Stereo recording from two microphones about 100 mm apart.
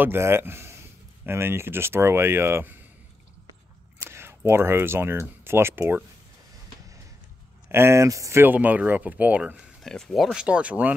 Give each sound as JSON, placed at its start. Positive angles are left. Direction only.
{"t": 0.0, "sound": "speech", "side_deg": -25}
{"t": 4.0, "sound": "speech", "side_deg": -25}
{"t": 7.6, "sound": "speech", "side_deg": -25}
{"t": 8.5, "sound": "speech", "side_deg": -15}
{"t": 9.8, "sound": "speech", "side_deg": 5}
{"t": 10.3, "sound": "speech", "side_deg": -10}